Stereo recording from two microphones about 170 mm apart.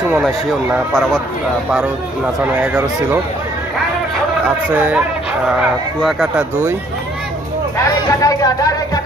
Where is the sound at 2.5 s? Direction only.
10° right (ahead or behind).